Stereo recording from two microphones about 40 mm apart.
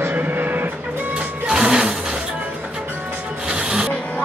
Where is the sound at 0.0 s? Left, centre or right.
Right.